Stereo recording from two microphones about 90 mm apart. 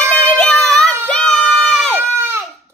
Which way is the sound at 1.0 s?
10° left (ahead or behind).